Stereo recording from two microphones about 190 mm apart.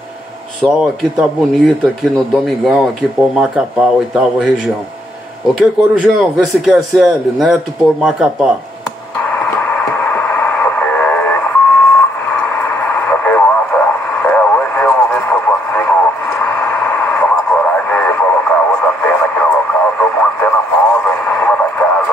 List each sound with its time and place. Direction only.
0.6 s a man's voice: centre (ahead or behind)
6.1 s a man's voice: centre (ahead or behind)
9.2 s a sound: 10° left (ahead or behind)